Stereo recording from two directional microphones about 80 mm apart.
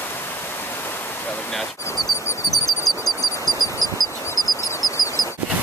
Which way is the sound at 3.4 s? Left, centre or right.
Right.